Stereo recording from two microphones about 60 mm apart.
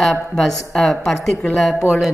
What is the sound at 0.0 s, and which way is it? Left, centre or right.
Speech, centre.